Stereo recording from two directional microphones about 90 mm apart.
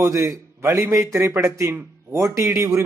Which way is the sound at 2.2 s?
35° right (ahead or behind).